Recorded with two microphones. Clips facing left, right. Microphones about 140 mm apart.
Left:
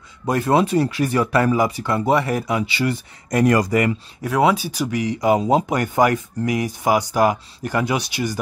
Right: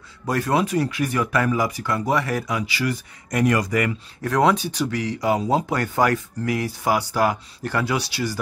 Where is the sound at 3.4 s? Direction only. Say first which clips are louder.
Left 3 dB; 40° left (ahead or behind).